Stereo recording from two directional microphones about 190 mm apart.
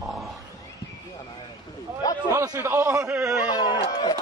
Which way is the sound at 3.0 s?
5° right (ahead or behind).